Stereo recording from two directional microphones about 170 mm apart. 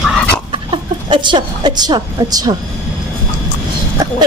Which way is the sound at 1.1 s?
30° right (ahead or behind).